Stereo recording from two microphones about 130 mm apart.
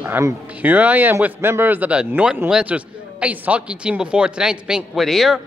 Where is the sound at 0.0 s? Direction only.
20° right (ahead or behind).